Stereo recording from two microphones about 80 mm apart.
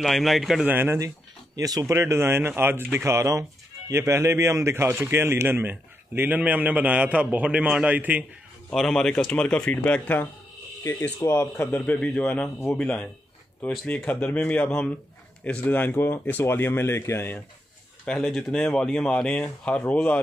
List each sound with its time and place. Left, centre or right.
0.0 s a man's voice: centre
0.7 s speech: right
1.6 s speech: right
1.9 s speech: right; by 8.3 s centre
8.7 s speech: centre
10.8 s speech: left
11.6 s speech: centre
18.0 s speech: centre